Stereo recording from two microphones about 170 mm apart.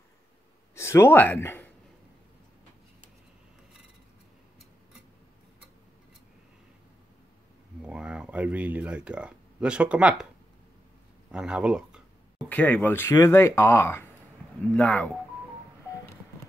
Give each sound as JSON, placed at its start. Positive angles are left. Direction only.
{"t": 0.7, "sound": "speech", "side_deg": 15}
{"t": 7.8, "sound": "speech", "side_deg": -5}
{"t": 11.3, "sound": "speech", "side_deg": -5}
{"t": 12.4, "sound": "speech", "side_deg": 10}